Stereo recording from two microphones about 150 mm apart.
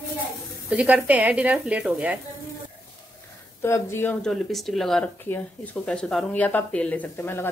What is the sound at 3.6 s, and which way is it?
Speech, 15° left (ahead or behind).